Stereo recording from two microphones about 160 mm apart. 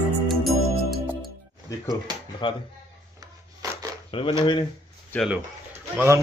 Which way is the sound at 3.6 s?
20° right (ahead or behind).